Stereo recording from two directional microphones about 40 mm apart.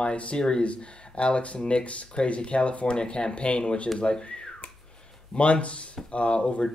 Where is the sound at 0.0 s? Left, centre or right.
Left.